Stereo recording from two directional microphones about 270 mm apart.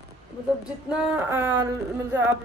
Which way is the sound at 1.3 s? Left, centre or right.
Centre.